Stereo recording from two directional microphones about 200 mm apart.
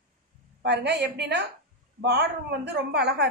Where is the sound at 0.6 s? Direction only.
55° right (ahead or behind).